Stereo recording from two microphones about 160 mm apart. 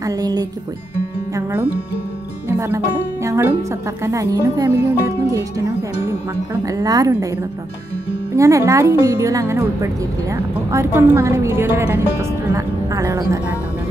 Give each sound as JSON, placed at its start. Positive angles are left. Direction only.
{"t": 0.0, "sound": "a woman's voice", "side_deg": -25}
{"t": 8.4, "sound": "a woman's voice", "side_deg": -20}